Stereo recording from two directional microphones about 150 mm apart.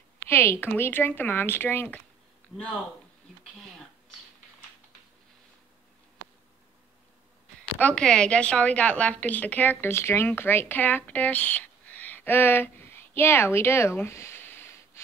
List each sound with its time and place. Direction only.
0.3 s a woman's voice: 15° left (ahead or behind)
7.8 s a woman's voice: 5° left (ahead or behind)